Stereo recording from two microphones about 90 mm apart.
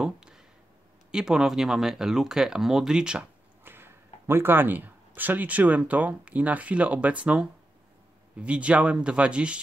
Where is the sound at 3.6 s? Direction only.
25° right (ahead or behind).